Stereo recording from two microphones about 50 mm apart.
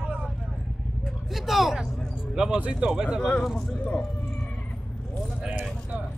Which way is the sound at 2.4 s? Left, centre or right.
Centre.